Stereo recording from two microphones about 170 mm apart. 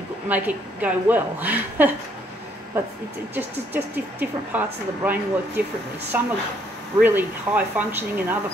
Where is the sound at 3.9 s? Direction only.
10° right (ahead or behind).